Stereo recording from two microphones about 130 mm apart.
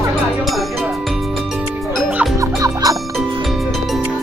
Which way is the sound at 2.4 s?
25° right (ahead or behind).